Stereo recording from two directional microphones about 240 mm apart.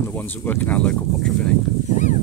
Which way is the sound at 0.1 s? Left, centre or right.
Centre.